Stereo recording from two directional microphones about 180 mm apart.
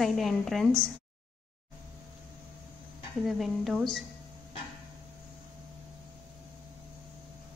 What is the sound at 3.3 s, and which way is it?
Speech, centre (ahead or behind).